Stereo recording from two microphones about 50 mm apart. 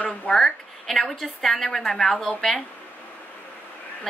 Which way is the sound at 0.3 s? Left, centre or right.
Centre.